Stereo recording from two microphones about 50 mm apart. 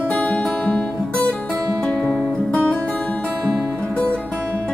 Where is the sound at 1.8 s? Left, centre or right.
Centre.